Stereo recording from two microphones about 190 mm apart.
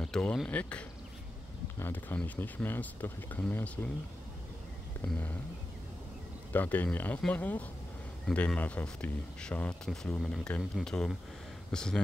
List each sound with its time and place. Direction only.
0.0 s speech: 5° left (ahead or behind)
5.0 s speech: 5° left (ahead or behind)
6.5 s speech: 10° left (ahead or behind)